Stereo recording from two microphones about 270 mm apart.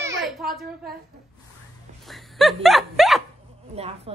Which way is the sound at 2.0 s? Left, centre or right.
Centre.